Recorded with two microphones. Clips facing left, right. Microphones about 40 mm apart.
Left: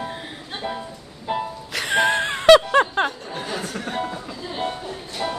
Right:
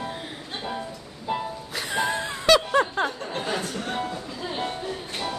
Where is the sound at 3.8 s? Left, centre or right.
Centre.